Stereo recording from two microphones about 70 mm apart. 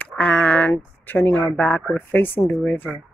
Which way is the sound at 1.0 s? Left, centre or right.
Left.